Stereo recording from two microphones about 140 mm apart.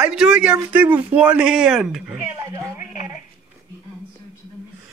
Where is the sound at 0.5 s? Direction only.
15° right (ahead or behind).